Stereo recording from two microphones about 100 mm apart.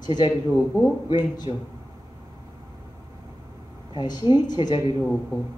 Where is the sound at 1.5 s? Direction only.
65° left (ahead or behind).